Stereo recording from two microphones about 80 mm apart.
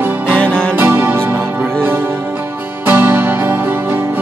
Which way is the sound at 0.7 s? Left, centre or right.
Right.